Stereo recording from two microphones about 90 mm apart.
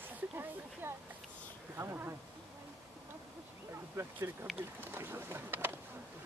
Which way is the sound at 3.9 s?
30° right (ahead or behind).